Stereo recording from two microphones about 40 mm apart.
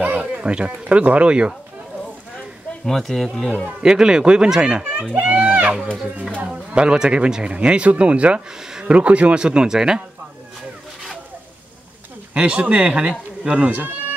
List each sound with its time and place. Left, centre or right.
0.0 s speech: right
0.7 s speech: right
2.8 s speech: centre
3.8 s speech: centre; by 5.9 s right
6.4 s speech: right
8.5 s a sound: centre
8.8 s speech: right; by 10.0 s centre
12.4 s speech: right